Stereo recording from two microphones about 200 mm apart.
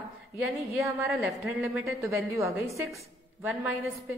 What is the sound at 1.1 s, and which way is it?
Speech, centre (ahead or behind).